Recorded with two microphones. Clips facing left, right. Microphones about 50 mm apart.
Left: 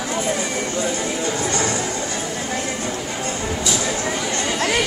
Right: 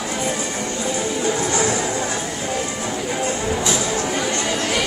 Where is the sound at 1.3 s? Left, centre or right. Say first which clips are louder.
Right 3 dB; centre.